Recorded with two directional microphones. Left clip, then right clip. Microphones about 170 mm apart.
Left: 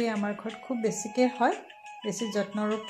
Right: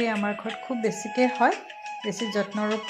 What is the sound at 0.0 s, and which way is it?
Speech, 15° right (ahead or behind).